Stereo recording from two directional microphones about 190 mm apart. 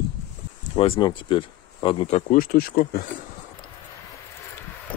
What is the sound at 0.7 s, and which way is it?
Speech, 30° left (ahead or behind).